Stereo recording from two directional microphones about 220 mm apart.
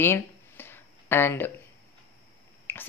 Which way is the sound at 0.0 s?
10° left (ahead or behind).